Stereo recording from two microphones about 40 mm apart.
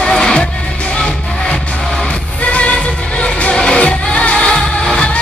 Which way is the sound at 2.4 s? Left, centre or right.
Left.